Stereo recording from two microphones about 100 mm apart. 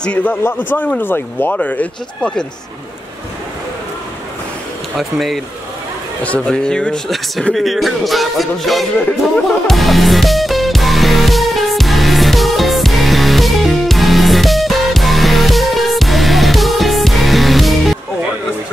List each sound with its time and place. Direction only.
0.0 s speech: 15° left (ahead or behind)
4.9 s speech: centre (ahead or behind)
6.2 s speech: 10° left (ahead or behind)
9.7 s music: centre (ahead or behind)